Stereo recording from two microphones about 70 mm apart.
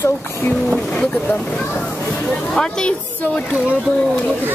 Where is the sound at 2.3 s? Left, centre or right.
Centre.